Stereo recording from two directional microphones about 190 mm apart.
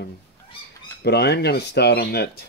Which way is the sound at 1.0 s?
60° left (ahead or behind).